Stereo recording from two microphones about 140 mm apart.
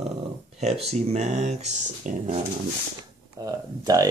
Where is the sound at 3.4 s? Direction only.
25° right (ahead or behind).